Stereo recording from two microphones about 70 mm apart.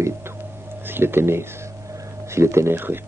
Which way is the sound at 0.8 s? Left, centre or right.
Right.